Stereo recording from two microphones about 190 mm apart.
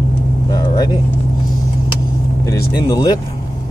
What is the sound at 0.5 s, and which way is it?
Vehicle, 20° left (ahead or behind).